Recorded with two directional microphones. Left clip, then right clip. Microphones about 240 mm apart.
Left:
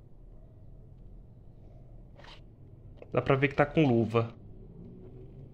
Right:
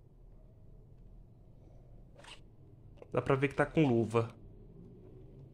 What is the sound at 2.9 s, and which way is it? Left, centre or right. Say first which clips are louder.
Speech: left 4 dB; centre.